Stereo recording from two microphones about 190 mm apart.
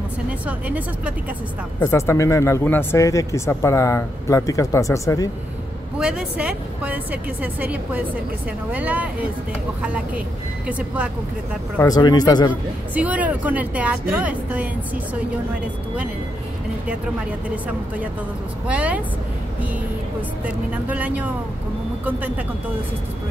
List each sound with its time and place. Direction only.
0.5 s a woman's voice: 10° right (ahead or behind)
1.8 s speech: 15° left (ahead or behind)
5.9 s a woman's voice: 5° right (ahead or behind)
11.8 s speech: 20° left (ahead or behind)
12.9 s a woman's voice: 10° right (ahead or behind)
18.7 s a woman's voice: 5° right (ahead or behind)
20.4 s a woman's voice: 10° right (ahead or behind)